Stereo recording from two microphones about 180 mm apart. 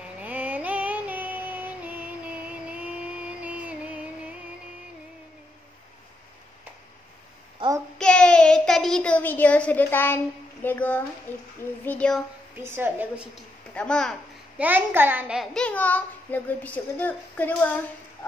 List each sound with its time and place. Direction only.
0.2 s female singing: 10° right (ahead or behind)
2.6 s music: 5° right (ahead or behind)
7.6 s child singing: 25° right (ahead or behind)
8.0 s a sound: 5° left (ahead or behind)
11.3 s a child's voice: 10° left (ahead or behind)
12.5 s a woman's voice: 10° right (ahead or behind)
13.7 s a child's voice: 5° left (ahead or behind)
14.6 s a child's voice: 10° right (ahead or behind); by 17.7 s 10° left (ahead or behind)